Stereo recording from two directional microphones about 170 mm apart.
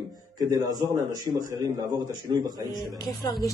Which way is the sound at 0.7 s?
20° right (ahead or behind).